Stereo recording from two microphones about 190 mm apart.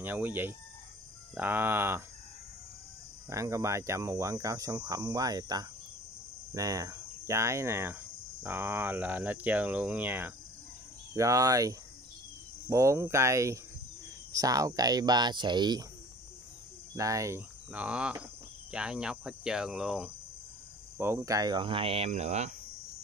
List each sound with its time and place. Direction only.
0.0 s speech: 10° right (ahead or behind)
3.3 s speech: 15° right (ahead or behind)
6.5 s cricket: 20° right (ahead or behind)
11.1 s speech: 15° right (ahead or behind)
16.9 s speech: 15° right (ahead or behind)
18.7 s cricket: 5° right (ahead or behind)
21.0 s speech: 15° right (ahead or behind); by 22.5 s 35° right (ahead or behind)